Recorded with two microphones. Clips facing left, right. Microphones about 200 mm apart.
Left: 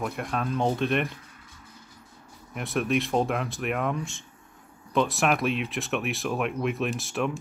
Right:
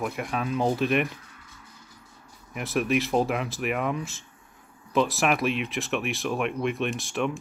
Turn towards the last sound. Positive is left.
turn(degrees=0)  # may be behind; listen again after turning